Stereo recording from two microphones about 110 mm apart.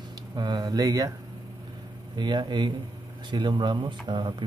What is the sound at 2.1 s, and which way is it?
Speech, 45° right (ahead or behind).